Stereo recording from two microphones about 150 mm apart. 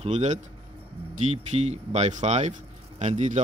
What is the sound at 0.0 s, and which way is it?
Speech, 50° right (ahead or behind).